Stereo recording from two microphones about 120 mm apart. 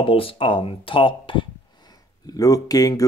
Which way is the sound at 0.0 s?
45° left (ahead or behind).